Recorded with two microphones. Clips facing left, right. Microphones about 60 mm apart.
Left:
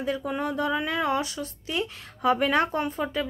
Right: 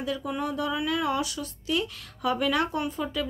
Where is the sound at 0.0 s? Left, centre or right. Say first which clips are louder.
Left 2 dB; left.